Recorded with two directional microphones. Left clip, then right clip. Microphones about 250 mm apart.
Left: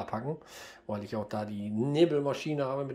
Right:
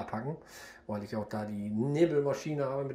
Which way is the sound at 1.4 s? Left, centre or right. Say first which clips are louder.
Left 1 dB; centre.